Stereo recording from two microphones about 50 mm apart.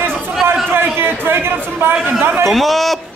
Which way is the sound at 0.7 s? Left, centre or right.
Right.